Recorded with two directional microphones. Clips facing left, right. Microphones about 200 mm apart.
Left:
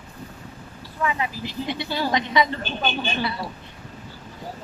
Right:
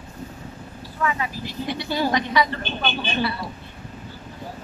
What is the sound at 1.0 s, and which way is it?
Speech, 20° left (ahead or behind).